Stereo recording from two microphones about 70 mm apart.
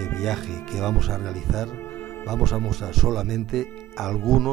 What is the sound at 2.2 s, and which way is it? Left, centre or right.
Speech, centre.